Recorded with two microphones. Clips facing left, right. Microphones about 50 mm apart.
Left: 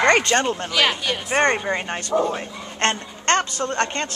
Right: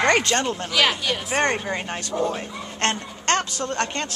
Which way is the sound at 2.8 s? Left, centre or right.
Centre.